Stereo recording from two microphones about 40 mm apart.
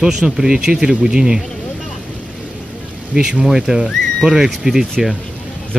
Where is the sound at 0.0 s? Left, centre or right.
Centre.